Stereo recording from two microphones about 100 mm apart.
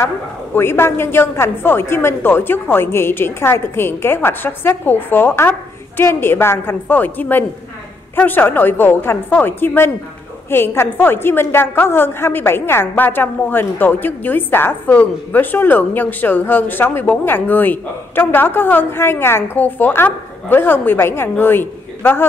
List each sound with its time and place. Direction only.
0.6 s a woman's voice: 25° left (ahead or behind)